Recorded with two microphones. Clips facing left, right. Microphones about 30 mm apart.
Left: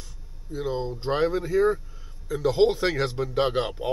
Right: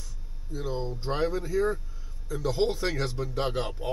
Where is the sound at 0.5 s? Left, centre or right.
Centre.